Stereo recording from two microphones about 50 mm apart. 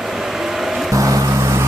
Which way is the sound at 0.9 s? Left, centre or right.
Right.